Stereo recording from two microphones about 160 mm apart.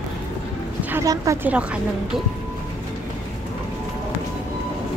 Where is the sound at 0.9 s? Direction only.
20° right (ahead or behind).